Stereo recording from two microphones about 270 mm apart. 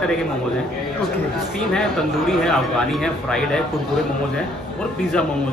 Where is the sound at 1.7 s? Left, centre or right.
Centre.